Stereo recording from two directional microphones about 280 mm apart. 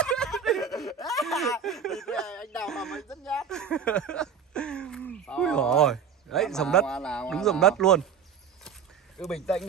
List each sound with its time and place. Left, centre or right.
0.0 s snicker: centre
1.2 s a sound: centre
9.2 s speech: centre